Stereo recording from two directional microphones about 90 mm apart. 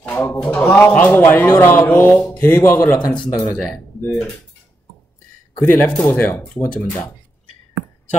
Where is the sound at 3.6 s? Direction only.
5° left (ahead or behind).